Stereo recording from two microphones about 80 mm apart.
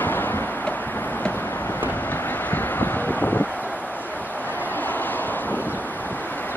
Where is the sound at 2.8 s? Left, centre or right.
Left.